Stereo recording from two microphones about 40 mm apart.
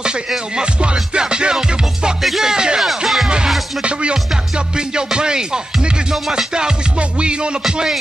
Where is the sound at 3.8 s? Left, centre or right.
Right.